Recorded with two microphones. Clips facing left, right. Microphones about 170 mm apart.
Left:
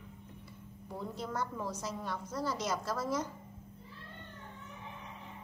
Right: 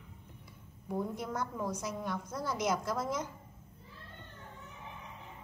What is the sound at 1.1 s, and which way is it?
A woman's voice, 15° right (ahead or behind).